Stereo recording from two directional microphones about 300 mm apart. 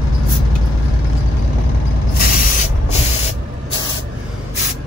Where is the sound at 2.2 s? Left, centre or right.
Left.